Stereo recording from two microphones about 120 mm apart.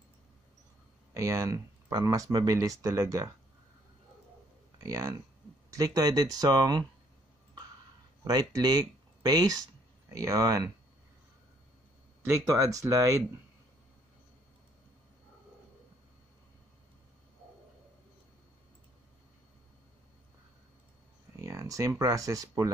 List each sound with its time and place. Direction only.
1.1 s speech: 25° right (ahead or behind)
4.7 s speech: 30° right (ahead or behind)
8.2 s speech: 35° right (ahead or behind)
12.3 s speech: 25° right (ahead or behind)
21.4 s speech: 25° right (ahead or behind)